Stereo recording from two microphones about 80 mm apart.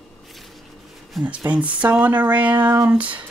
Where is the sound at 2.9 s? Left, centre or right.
Centre.